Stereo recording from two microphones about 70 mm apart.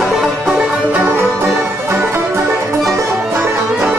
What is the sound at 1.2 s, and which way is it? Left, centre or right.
Music, right.